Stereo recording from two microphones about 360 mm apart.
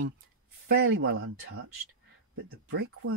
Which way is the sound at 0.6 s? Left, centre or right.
Right.